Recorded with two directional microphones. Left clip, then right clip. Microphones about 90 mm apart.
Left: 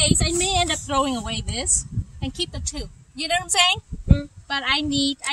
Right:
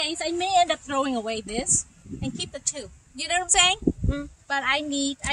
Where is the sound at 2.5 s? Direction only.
30° right (ahead or behind).